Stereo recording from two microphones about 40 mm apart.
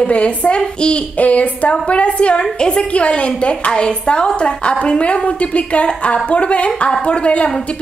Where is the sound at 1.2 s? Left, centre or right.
Left.